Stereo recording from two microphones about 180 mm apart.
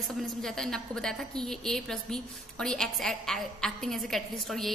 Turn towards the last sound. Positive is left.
turn(degrees=0)  # may be behind; listen again after turning